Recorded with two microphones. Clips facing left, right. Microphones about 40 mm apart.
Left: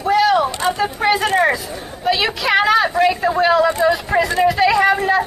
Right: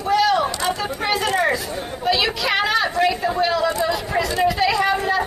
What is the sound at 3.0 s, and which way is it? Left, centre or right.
A man's voice, left.